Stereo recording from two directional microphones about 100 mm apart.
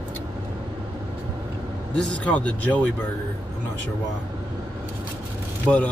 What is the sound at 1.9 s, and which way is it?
Speech, 15° left (ahead or behind).